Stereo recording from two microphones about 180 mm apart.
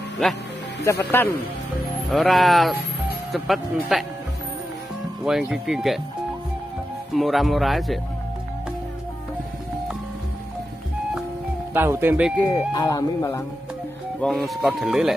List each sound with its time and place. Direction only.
0.8 s speech: 10° left (ahead or behind)
2.0 s speech: centre (ahead or behind)
5.2 s speech: 5° right (ahead or behind)
7.2 s speech: centre (ahead or behind)
11.7 s speech: 10° right (ahead or behind)
12.4 s speech: 15° left (ahead or behind)
14.2 s speech: centre (ahead or behind)